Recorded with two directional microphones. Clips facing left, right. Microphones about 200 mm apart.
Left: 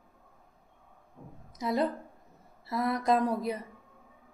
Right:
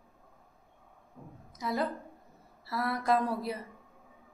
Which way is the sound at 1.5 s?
20° left (ahead or behind).